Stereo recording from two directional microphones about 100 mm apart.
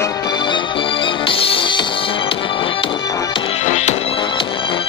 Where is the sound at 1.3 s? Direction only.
65° left (ahead or behind).